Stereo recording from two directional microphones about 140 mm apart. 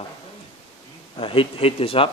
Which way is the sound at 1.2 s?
40° left (ahead or behind).